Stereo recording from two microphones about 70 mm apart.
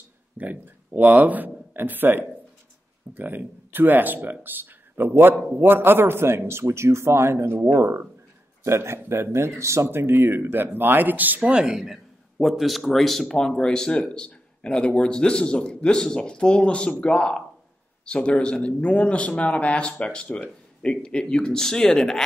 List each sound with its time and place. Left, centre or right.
0.4 s speech: right
9.8 s speech: right
11.7 s a man's voice: centre